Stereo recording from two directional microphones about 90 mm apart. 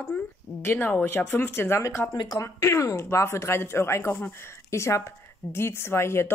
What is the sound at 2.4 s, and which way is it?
Speech, 35° left (ahead or behind).